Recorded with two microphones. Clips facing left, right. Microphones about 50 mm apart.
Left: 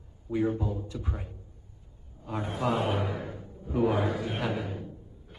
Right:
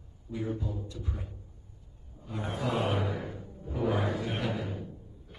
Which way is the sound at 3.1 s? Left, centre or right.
Left.